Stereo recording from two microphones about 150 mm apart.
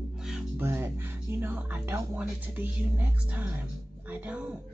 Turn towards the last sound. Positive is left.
turn(degrees=-10)  # may be behind; listen again after turning